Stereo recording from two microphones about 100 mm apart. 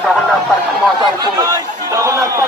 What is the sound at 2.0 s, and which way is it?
Chatter, 30° right (ahead or behind).